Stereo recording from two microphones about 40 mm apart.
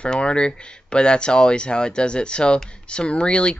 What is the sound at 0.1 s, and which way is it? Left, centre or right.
Speech, left.